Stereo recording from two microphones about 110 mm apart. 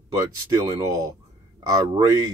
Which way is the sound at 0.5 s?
35° right (ahead or behind).